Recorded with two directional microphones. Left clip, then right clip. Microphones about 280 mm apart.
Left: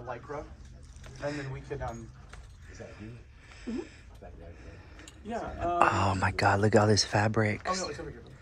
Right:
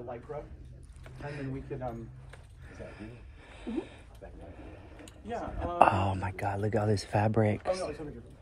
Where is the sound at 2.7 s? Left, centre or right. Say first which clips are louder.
Right 1 dB; centre.